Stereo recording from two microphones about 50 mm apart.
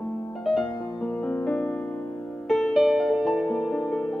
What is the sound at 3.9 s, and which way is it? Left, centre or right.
Music, centre.